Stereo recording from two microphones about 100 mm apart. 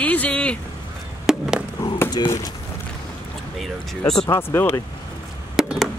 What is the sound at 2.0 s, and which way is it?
Speech, 40° left (ahead or behind).